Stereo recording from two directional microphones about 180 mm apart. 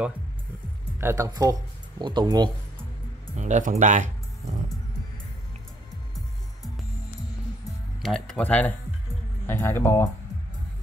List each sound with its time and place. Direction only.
0.9 s speech: 15° right (ahead or behind)
3.3 s speech: 45° right (ahead or behind)
8.0 s speech: 5° left (ahead or behind)